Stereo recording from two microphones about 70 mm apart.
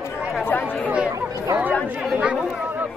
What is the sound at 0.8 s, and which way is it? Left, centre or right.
Speech, centre.